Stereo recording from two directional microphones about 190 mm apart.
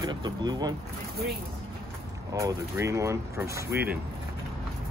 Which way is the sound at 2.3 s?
15° right (ahead or behind).